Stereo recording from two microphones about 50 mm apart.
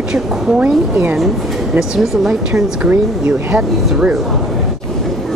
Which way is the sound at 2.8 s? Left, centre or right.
Right.